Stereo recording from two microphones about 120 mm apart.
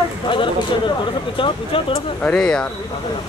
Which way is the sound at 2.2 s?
10° left (ahead or behind).